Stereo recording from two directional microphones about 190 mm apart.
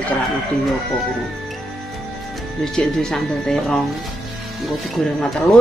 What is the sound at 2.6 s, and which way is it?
Speech, 5° left (ahead or behind).